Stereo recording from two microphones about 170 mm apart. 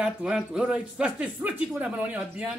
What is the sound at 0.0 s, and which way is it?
A man's voice, 5° right (ahead or behind).